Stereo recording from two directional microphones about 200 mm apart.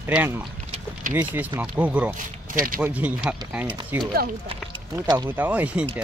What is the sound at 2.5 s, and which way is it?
Speech, 45° right (ahead or behind).